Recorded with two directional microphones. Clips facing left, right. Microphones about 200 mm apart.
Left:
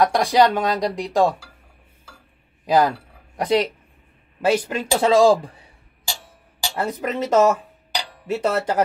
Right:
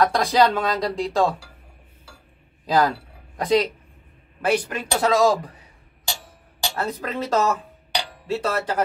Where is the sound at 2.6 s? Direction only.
15° left (ahead or behind).